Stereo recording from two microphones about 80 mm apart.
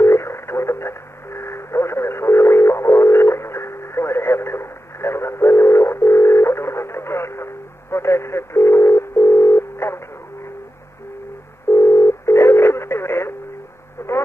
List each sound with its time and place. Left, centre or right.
0.0 s radio: left
11.7 s telephone dialing: left
14.0 s radio: left